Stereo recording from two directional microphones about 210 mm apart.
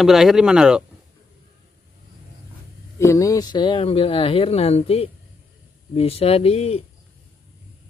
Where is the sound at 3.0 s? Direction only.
15° left (ahead or behind); by 6.8 s 30° left (ahead or behind).